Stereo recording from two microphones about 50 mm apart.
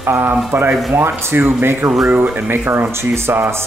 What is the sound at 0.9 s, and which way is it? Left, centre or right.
Speech, right.